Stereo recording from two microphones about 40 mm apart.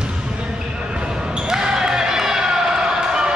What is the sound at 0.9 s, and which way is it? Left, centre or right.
Basketball bounce, right.